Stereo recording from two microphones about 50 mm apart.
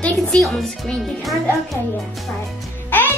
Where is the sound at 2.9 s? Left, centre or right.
Left.